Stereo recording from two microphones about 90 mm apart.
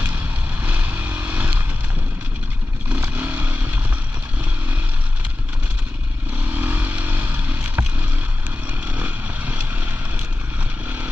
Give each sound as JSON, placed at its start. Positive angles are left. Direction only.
{"t": 0.0, "sound": "vehicle", "side_deg": -15}
{"t": 3.0, "sound": "motorcycle", "side_deg": -20}
{"t": 6.3, "sound": "vehicle", "side_deg": -20}